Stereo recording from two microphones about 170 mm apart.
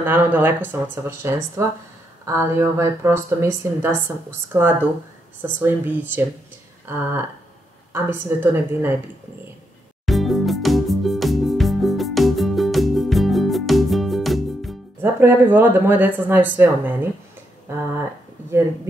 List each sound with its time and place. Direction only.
0.0 s speech: 10° right (ahead or behind)
7.9 s speech: 15° right (ahead or behind)
10.0 s music: centre (ahead or behind)
15.0 s speech: 15° right (ahead or behind)